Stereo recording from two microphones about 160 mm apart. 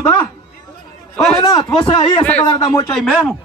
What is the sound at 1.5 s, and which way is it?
Speech, 25° left (ahead or behind).